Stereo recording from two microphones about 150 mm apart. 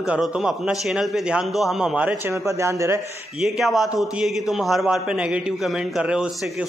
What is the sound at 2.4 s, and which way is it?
Speech, 20° right (ahead or behind).